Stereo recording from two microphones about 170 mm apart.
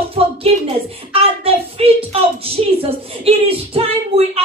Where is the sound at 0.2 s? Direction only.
35° right (ahead or behind).